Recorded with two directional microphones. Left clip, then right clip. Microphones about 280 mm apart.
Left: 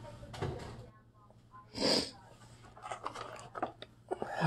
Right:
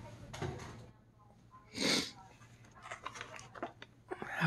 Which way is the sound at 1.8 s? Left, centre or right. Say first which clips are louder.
Left 2 dB; centre.